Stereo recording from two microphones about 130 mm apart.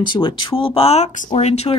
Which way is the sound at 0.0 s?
35° left (ahead or behind).